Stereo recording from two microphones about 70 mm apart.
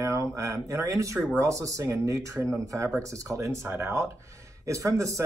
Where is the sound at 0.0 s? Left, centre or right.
Right.